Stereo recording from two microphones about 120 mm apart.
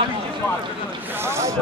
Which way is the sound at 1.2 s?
25° right (ahead or behind).